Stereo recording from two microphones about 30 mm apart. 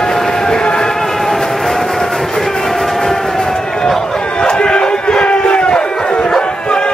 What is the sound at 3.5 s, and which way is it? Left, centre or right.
Run, centre.